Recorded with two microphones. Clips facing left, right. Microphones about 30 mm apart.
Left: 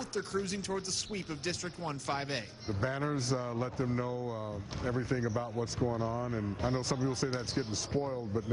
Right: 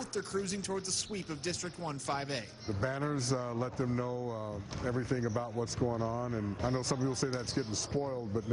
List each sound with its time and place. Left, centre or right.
0.1 s speech: centre